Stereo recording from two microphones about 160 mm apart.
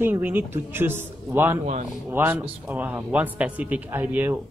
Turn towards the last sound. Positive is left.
turn(degrees=-10)  # may be behind; listen again after turning